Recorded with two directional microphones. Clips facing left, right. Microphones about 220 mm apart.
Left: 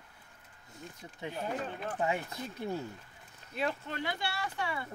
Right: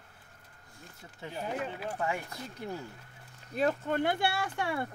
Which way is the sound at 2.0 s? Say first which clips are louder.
Left 3 dB; 20° left (ahead or behind).